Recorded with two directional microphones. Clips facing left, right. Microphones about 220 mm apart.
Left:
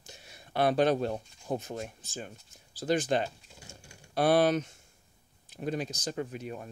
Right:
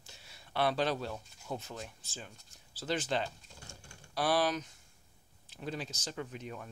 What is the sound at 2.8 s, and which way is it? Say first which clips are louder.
Speech: left 7 dB; 40° left (ahead or behind).